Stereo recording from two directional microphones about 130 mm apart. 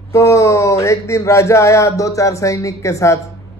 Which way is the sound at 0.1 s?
25° left (ahead or behind).